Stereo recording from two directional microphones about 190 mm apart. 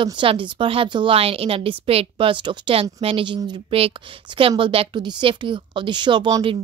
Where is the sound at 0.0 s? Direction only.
25° right (ahead or behind).